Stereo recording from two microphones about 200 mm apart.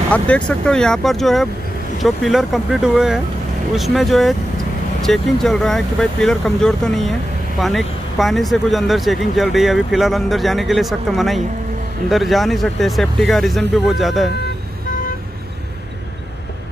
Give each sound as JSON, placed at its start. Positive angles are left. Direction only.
{"t": 0.1, "sound": "speech", "side_deg": 5}